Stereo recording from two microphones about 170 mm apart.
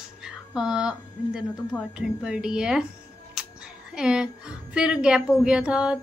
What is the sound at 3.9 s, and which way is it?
A woman's voice, 5° right (ahead or behind).